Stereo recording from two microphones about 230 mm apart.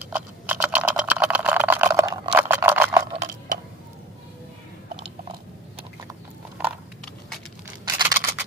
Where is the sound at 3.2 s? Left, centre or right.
Right.